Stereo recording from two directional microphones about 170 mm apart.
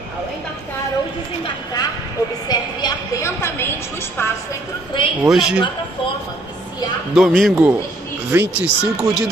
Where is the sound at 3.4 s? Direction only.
15° left (ahead or behind).